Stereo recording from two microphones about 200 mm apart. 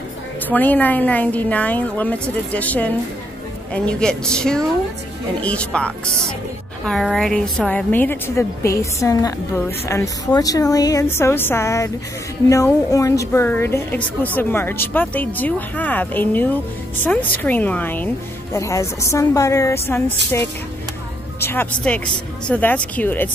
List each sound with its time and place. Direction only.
0.5 s a woman's voice: 10° left (ahead or behind)